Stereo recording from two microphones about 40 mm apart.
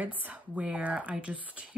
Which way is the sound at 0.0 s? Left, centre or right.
Right.